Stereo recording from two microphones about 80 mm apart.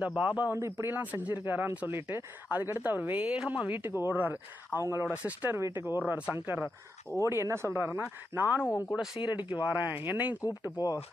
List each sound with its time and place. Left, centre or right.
0.0 s a man's voice: centre
0.6 s speech: right
0.9 s speech: right
5.1 s speech: centre
5.6 s speech: right
5.9 s a man's voice: centre
8.5 s a man's voice: centre
9.2 s speech: left
9.6 s speech: left
9.8 s speech: right
10.4 s speech: left